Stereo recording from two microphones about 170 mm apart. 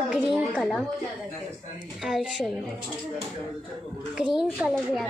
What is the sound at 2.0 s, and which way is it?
Speech, centre (ahead or behind).